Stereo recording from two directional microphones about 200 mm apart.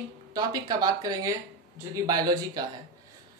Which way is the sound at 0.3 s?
20° right (ahead or behind).